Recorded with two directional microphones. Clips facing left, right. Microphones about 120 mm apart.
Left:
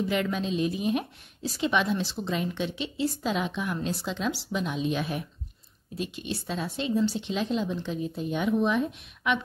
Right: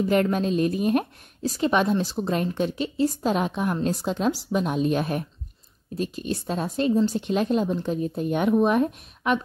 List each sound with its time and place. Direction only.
0.1 s a woman's voice: 50° right (ahead or behind)